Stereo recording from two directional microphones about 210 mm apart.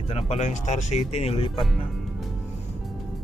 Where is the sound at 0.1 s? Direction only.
30° left (ahead or behind).